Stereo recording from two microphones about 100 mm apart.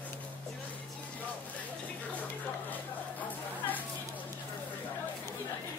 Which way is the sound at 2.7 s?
15° left (ahead or behind).